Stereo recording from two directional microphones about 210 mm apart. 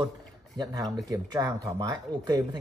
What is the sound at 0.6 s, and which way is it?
Speech, 20° right (ahead or behind).